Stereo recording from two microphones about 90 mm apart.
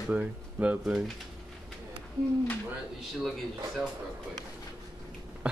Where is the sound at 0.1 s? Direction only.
15° right (ahead or behind).